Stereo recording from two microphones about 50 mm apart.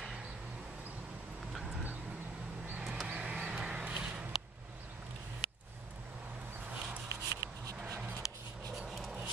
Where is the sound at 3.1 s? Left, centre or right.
Right.